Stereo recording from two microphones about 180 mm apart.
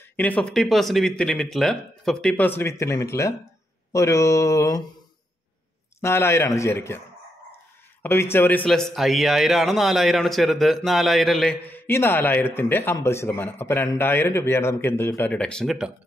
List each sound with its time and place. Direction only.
0.1 s a man's voice: 10° left (ahead or behind)
5.9 s a man's voice: 15° left (ahead or behind)
8.0 s speech: 15° left (ahead or behind)
11.6 s a man's voice: 10° left (ahead or behind)